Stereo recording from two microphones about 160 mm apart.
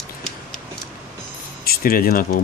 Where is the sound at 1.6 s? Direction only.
70° left (ahead or behind).